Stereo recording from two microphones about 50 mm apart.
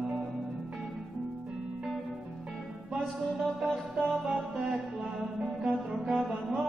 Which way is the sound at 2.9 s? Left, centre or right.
Centre.